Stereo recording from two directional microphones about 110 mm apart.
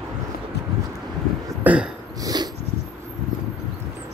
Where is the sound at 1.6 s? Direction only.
10° right (ahead or behind).